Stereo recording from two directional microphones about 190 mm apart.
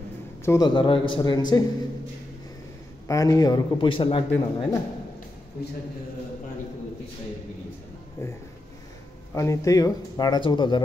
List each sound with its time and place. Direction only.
0.5 s speech: 25° left (ahead or behind)
3.1 s speech: 20° left (ahead or behind)
8.2 s speech: 15° left (ahead or behind)